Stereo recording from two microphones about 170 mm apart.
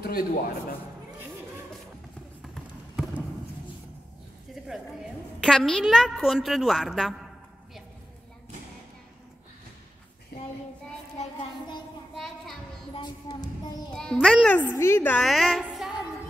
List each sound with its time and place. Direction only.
0.0 s a man's voice: 65° left (ahead or behind)
4.6 s a sound: centre (ahead or behind)
5.4 s a woman's voice: centre (ahead or behind)
10.3 s child singing: 70° left (ahead or behind)
12.2 s a sound: centre (ahead or behind)
12.9 s music: 25° left (ahead or behind)
13.9 s a child's voice: centre (ahead or behind)
15.2 s music: centre (ahead or behind)